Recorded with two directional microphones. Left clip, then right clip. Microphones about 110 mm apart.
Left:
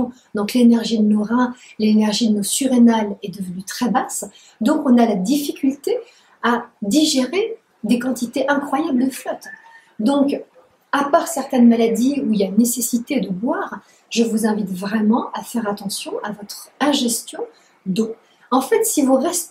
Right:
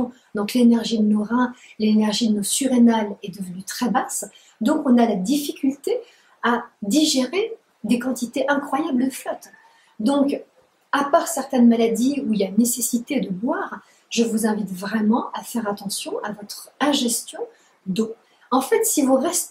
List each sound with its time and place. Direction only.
0.3 s a woman's voice: 5° left (ahead or behind)
17.9 s speech: 20° left (ahead or behind)
18.5 s a woman's voice: 5° left (ahead or behind)